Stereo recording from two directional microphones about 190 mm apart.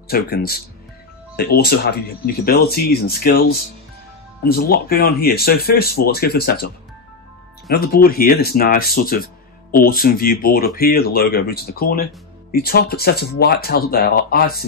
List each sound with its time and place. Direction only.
0.1 s speech: 50° left (ahead or behind)